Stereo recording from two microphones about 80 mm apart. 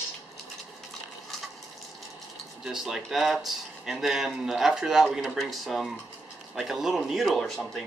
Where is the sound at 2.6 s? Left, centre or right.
Centre.